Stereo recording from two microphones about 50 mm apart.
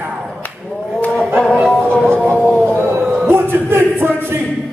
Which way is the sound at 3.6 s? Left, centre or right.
Right.